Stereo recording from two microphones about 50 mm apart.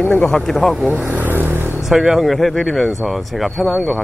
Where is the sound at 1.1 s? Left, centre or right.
Right.